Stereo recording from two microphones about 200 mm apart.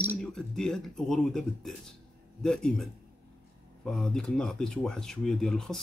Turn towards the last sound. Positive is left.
turn(degrees=0)  # may be behind; listen again after turning